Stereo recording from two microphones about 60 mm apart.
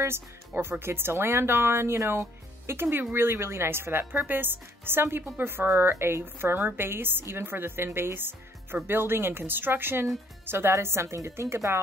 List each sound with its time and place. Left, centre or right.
0.6 s a woman's voice: right